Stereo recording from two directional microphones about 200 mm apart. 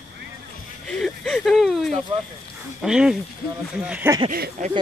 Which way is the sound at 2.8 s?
5° right (ahead or behind).